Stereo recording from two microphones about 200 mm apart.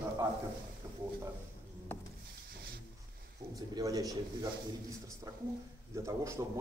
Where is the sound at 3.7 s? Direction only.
15° right (ahead or behind).